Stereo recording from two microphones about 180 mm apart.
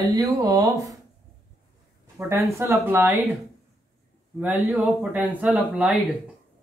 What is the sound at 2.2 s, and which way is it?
Speech, 15° right (ahead or behind).